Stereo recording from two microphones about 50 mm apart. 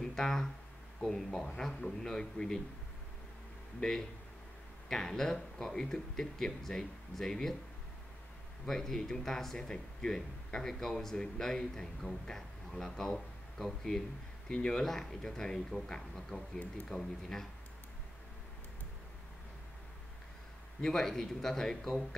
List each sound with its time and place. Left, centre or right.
0.0 s speech: centre
4.8 s speech: centre
8.6 s speech: centre
20.8 s speech: centre